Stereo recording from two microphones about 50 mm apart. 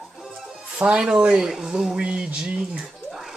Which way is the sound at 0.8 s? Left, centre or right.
Centre.